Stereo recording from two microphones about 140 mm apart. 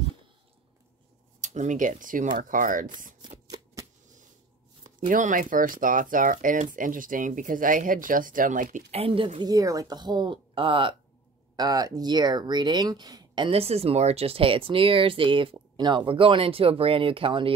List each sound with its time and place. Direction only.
1.4 s speech: 60° right (ahead or behind)
3.2 s shuffling cards: 30° right (ahead or behind)
4.8 s speech: 65° right (ahead or behind)
8.9 s speech: 40° right (ahead or behind)
9.4 s speech: 25° right (ahead or behind)
11.5 s speech: 25° right (ahead or behind)